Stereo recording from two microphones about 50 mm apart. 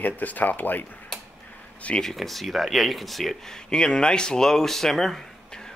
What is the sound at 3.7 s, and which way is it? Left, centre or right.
Speech, centre.